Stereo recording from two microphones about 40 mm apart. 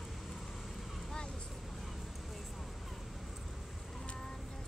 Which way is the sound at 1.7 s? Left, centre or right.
Centre.